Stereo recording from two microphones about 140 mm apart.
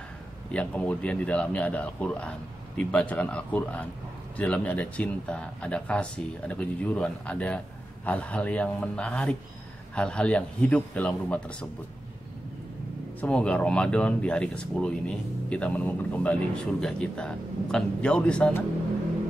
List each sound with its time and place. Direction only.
0.5 s speech: 10° left (ahead or behind)
13.2 s speech: 10° left (ahead or behind)